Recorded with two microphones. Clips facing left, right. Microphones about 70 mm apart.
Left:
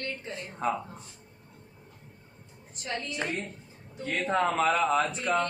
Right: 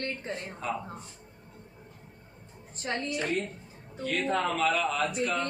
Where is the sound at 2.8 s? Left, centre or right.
Right.